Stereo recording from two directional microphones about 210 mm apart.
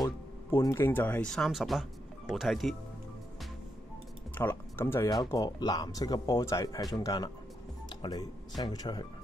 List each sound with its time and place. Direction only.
0.0 s speech: 15° left (ahead or behind); by 2.7 s centre (ahead or behind)
4.4 s speech: 10° left (ahead or behind)